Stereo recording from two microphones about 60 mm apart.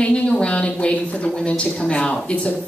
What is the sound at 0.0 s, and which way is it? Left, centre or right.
A woman's voice, centre.